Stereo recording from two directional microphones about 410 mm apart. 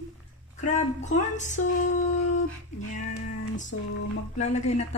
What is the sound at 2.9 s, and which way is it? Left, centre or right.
Music, centre.